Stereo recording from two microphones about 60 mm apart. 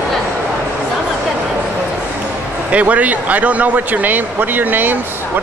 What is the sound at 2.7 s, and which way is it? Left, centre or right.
A man's voice, right.